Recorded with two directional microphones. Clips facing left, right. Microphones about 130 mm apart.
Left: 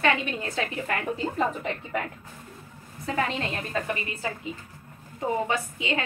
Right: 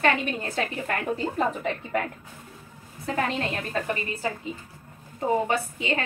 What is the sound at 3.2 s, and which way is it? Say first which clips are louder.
Speech: right 1 dB; 40° right (ahead or behind).